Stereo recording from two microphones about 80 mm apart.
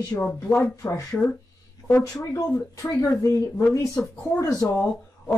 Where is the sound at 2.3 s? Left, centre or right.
Left.